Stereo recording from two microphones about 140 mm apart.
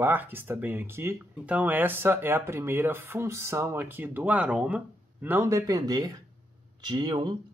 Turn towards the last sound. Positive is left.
turn(degrees=-35)  # may be behind; listen again after turning